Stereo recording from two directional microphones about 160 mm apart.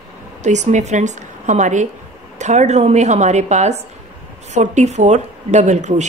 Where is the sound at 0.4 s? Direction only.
45° right (ahead or behind).